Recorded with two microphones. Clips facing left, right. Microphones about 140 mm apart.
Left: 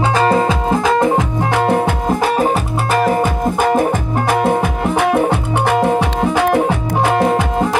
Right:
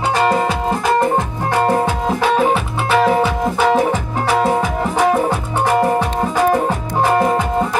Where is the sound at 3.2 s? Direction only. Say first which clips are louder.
Even; 50° left (ahead or behind).